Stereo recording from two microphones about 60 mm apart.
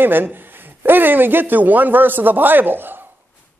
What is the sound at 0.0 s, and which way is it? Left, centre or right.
A man's voice, right.